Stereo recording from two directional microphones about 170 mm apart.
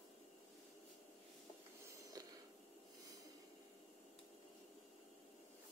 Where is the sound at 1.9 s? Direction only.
20° right (ahead or behind).